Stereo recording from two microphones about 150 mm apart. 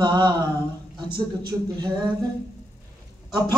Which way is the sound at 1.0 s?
90° right.